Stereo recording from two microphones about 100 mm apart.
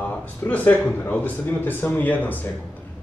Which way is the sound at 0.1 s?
15° left (ahead or behind).